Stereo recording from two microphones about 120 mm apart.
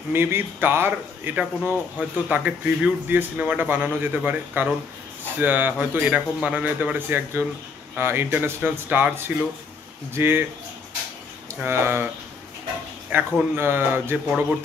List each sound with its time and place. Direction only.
0.1 s speech: 20° right (ahead or behind)
11.6 s speech: 20° right (ahead or behind)
13.1 s speech: 15° right (ahead or behind)